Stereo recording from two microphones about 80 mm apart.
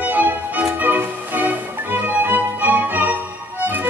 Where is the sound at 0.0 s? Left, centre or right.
Right.